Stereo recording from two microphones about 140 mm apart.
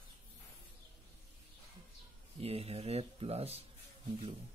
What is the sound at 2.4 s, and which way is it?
Speech, 45° right (ahead or behind).